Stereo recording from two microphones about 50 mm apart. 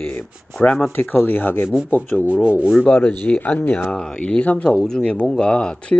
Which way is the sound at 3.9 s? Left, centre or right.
Centre.